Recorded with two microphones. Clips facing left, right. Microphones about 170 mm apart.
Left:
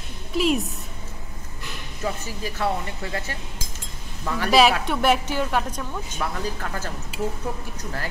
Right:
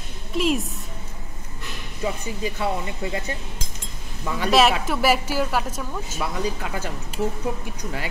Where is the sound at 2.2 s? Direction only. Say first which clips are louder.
Right 1 dB; 15° right (ahead or behind).